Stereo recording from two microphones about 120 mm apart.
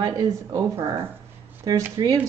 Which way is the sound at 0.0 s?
30° right (ahead or behind).